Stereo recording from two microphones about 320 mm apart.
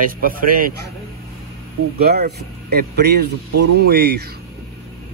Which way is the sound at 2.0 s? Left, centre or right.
Right.